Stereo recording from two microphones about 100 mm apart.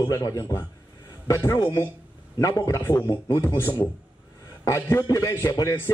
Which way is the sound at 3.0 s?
45° left (ahead or behind).